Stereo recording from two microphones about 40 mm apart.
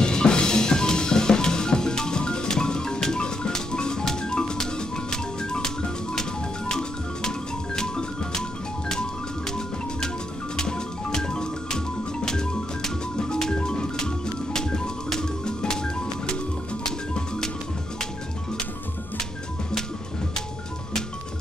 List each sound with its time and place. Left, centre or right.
0.0 s music: centre